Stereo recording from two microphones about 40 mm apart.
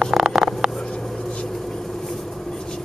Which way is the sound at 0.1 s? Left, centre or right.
Centre.